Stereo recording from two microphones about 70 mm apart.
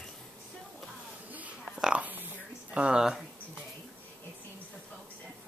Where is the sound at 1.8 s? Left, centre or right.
Centre.